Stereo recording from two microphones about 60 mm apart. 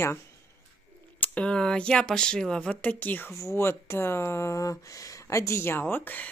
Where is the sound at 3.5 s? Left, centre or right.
Left.